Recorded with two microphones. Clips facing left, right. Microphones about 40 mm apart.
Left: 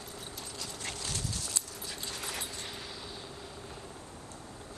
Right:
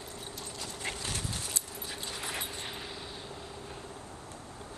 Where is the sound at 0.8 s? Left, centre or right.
Right.